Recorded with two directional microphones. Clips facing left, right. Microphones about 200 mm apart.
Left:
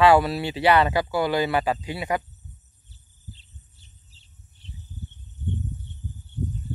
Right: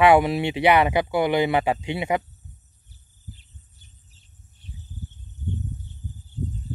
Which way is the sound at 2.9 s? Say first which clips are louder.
Right 1 dB; 25° left (ahead or behind).